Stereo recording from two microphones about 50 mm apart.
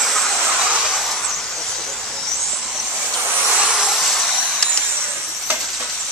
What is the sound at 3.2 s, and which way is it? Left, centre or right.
Vehicle, right.